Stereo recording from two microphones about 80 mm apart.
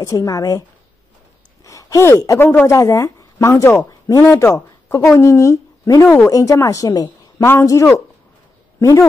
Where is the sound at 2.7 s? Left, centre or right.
Left.